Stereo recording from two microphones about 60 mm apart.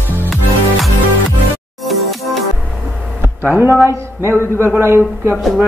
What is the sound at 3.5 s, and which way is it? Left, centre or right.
A man's voice, right.